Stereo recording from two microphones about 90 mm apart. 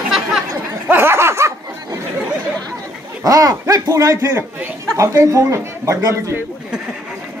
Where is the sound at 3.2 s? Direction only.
40° right (ahead or behind).